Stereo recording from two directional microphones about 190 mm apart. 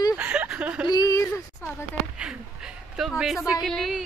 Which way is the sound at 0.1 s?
5° right (ahead or behind).